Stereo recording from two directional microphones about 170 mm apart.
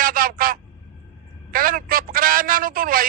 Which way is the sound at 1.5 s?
55° right (ahead or behind).